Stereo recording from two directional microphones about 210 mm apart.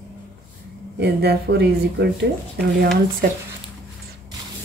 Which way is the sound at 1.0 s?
50° right (ahead or behind).